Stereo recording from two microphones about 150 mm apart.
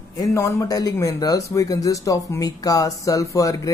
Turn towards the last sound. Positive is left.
turn(degrees=20)  # may be behind; listen again after turning